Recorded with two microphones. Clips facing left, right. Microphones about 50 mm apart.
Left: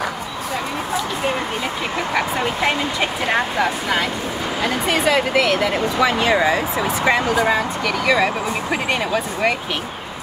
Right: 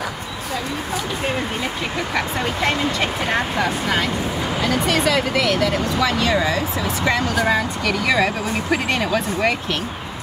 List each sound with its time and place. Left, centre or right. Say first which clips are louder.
2.1 s speech: left 2 dB; centre
7.4 s speech: left 1 dB; centre